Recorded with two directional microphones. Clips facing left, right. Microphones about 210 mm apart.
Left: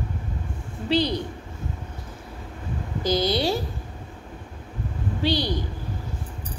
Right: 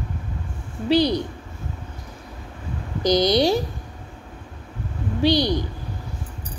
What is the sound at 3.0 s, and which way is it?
Speech, 15° right (ahead or behind).